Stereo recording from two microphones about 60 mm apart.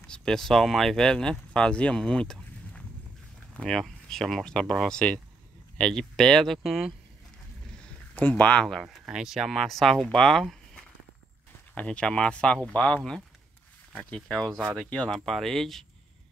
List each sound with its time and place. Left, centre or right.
0.0 s speech: centre
7.8 s a sound: left
8.9 s speech: centre
11.7 s speech: centre
15.0 s speech: centre